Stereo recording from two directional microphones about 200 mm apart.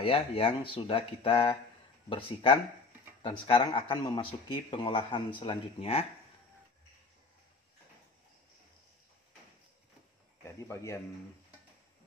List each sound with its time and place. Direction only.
0.0 s speech: 30° left (ahead or behind)
10.4 s speech: 15° left (ahead or behind)